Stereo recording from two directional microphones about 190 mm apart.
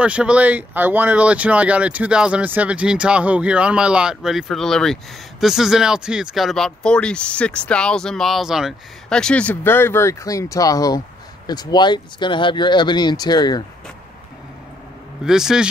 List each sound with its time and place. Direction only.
0.0 s speech: 5° right (ahead or behind); by 13.7 s 20° left (ahead or behind)
15.2 s speech: 5° right (ahead or behind)